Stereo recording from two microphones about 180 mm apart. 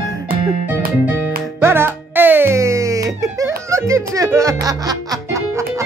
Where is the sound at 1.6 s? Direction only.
10° right (ahead or behind).